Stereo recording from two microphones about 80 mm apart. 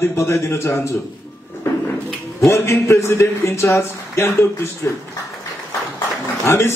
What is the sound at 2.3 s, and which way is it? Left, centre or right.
A man's voice, left.